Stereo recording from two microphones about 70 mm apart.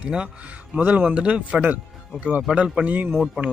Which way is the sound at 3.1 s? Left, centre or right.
Centre.